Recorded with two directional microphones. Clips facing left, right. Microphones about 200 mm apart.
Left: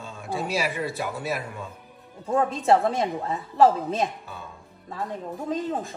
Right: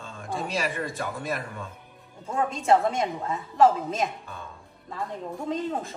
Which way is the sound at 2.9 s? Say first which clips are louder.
Left 2 dB; 35° left (ahead or behind).